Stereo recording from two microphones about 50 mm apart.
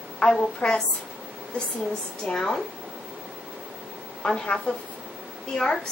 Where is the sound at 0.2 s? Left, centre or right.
Centre.